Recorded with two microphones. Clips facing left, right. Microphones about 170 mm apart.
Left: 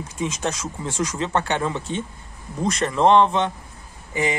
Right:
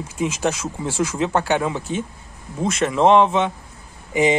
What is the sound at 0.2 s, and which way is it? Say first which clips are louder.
Speech: right 4 dB; 5° right (ahead or behind).